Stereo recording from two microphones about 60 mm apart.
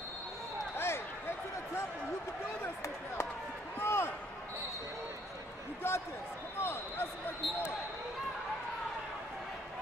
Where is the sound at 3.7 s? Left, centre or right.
Left.